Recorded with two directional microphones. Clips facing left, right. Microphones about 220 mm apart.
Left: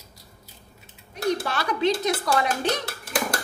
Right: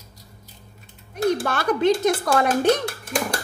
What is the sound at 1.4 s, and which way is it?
Speech, 50° right (ahead or behind).